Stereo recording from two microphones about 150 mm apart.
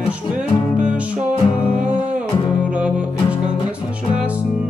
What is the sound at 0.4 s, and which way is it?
Music, 10° right (ahead or behind).